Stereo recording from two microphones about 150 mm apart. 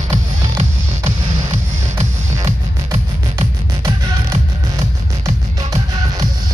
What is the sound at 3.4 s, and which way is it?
Music, 40° right (ahead or behind).